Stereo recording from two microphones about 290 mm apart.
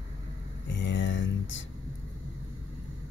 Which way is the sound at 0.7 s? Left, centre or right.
Left.